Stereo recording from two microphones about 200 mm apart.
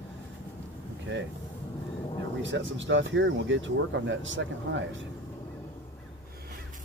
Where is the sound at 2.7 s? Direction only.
70° right (ahead or behind).